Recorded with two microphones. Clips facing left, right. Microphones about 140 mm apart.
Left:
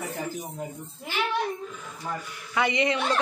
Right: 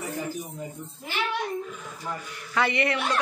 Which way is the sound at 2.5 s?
15° left (ahead or behind).